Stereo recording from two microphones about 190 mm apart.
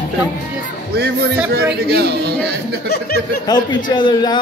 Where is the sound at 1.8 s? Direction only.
55° right (ahead or behind).